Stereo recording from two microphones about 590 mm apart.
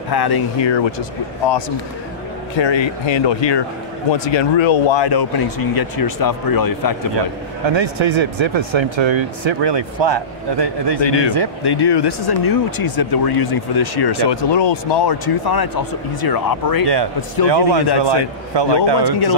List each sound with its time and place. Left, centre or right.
0.1 s speech: left
2.5 s speech: left
7.7 s speech: right
11.0 s speech: left
16.8 s a man's voice: right